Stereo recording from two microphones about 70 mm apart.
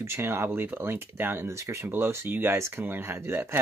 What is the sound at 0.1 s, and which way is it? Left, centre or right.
Speech, right.